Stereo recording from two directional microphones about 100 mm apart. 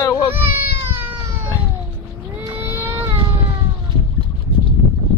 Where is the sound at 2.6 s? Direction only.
20° right (ahead or behind).